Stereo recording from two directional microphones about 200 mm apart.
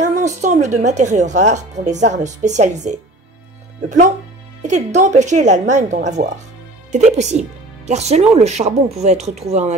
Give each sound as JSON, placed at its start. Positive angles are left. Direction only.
{"t": 0.0, "sound": "speech", "side_deg": -35}
{"t": 4.6, "sound": "speech", "side_deg": -35}